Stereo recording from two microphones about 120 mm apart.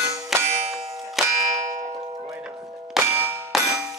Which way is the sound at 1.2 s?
Centre (ahead or behind).